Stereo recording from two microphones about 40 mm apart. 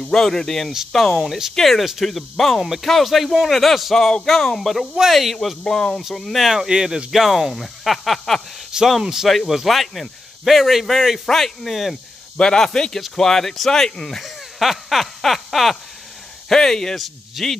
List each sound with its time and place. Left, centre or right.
0.1 s speech: centre
5.7 s speech: centre
6.1 s speech: centre
6.5 s speech: centre
9.0 s speech: centre
9.7 s speech: centre
11.2 s speech: centre
12.4 s speech: centre
14.0 s speech: centre
14.6 s a sound: centre
16.4 s speech: centre